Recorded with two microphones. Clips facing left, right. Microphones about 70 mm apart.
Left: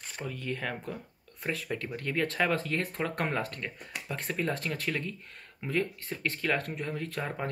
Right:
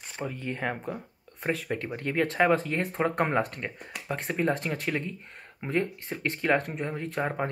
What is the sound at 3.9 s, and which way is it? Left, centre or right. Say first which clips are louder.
Speech: right 4 dB; centre.